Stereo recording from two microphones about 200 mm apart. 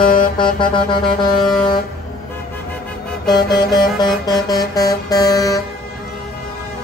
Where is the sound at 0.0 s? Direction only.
45° left (ahead or behind).